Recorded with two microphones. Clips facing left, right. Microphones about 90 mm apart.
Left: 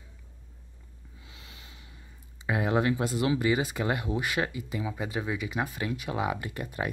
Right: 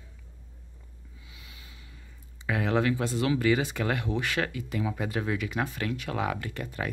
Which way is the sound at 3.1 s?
15° left (ahead or behind).